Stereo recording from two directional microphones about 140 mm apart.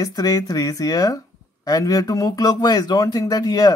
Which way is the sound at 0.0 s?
25° left (ahead or behind).